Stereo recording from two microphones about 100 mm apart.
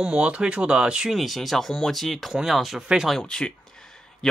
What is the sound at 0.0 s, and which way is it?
Speech, 10° right (ahead or behind).